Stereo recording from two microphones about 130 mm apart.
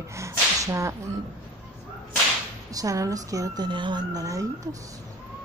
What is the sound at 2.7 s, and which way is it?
Speech, 25° right (ahead or behind).